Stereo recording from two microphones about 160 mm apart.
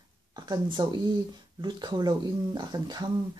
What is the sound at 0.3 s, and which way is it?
A woman's voice, 25° right (ahead or behind).